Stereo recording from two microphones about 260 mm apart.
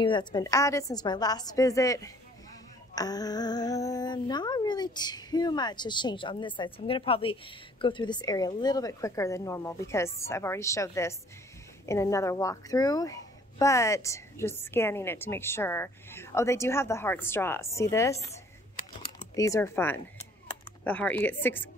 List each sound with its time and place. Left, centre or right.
0.0 s speech: centre
19.3 s speech: centre